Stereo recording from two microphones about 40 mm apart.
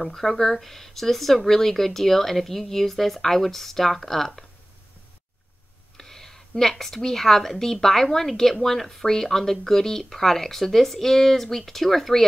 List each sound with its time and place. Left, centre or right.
0.0 s speech: centre
5.9 s a woman's voice: centre